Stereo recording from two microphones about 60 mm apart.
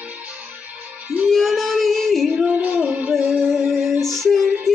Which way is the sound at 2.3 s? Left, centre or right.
Right.